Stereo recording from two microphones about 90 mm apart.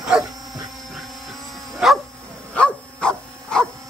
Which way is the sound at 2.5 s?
10° left (ahead or behind).